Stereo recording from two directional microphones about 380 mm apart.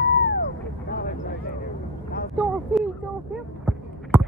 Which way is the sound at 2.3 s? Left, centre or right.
Centre.